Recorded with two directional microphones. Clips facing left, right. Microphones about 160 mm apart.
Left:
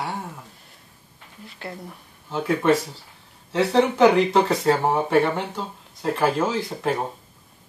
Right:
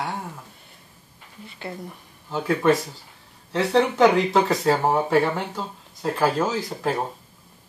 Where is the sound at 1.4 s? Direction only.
Centre (ahead or behind).